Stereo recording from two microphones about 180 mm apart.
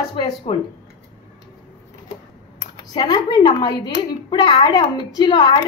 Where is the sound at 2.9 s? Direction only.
25° left (ahead or behind).